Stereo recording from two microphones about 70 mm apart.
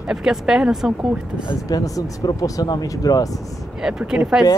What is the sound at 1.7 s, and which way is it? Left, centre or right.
Speech, left.